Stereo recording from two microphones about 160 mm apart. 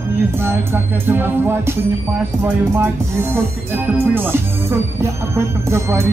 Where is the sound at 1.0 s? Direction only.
15° right (ahead or behind).